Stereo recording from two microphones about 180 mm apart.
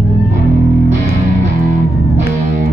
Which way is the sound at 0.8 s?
40° right (ahead or behind).